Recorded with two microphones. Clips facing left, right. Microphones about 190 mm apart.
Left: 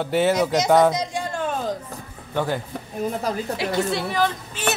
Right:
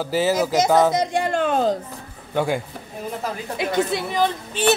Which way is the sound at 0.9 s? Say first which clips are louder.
Right 6 dB; 65° right (ahead or behind).